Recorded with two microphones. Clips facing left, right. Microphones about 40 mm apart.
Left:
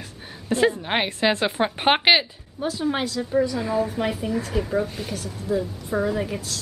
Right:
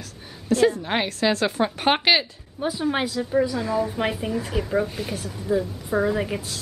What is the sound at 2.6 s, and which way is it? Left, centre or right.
A woman's voice, centre.